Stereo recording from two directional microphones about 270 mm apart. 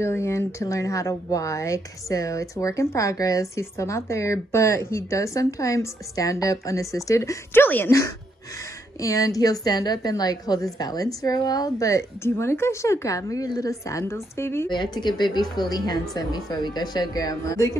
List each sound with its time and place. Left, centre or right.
0.0 s speech: centre